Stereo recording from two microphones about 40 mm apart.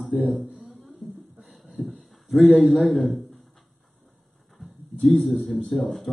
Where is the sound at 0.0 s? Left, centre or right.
Centre.